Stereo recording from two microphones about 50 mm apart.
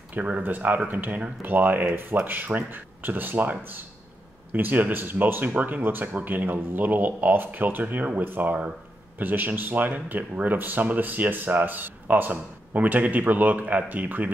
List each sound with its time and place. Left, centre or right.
0.1 s speech: right
0.4 s speech: right